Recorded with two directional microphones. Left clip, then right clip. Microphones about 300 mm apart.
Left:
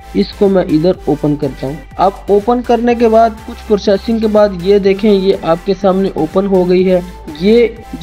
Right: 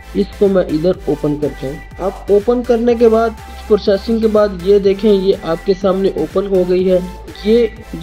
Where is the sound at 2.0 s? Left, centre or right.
Left.